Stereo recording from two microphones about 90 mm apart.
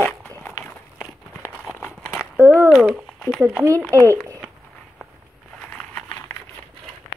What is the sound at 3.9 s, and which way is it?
Speech, 35° right (ahead or behind).